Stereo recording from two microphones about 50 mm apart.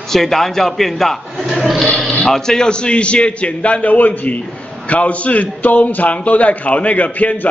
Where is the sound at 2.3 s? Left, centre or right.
Centre.